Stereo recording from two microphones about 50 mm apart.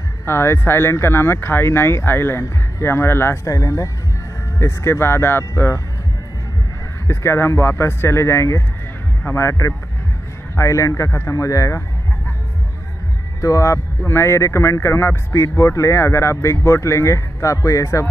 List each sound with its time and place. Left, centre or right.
0.2 s speech: left
2.4 s speech: left
3.4 s a man's voice: left
4.6 s speech: left
7.1 s speech: left
9.3 s speech: left
10.5 s a man's voice: left
13.4 s a man's voice: left
14.0 s speech: left